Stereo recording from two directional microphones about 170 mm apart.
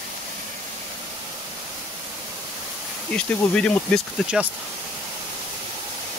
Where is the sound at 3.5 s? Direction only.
5° left (ahead or behind).